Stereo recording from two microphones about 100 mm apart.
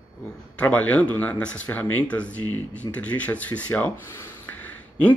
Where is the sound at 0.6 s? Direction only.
15° left (ahead or behind).